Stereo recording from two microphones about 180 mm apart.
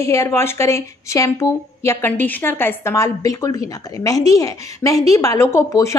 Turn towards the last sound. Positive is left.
turn(degrees=15)  # may be behind; listen again after turning